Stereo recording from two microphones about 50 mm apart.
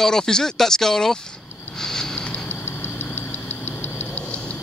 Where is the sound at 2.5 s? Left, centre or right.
Left.